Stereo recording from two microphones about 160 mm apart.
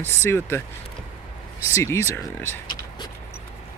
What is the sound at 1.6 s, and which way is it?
Speech, 15° left (ahead or behind).